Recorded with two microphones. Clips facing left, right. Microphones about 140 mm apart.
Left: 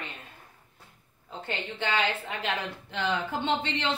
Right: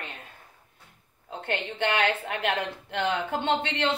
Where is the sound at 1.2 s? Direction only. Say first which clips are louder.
Right 4 dB; 60° right (ahead or behind).